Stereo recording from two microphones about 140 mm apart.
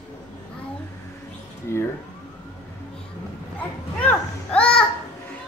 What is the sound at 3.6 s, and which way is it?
Children playing, 10° left (ahead or behind).